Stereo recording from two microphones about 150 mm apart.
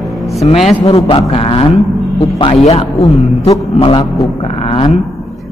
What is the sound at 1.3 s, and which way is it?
A man's voice, 40° left (ahead or behind).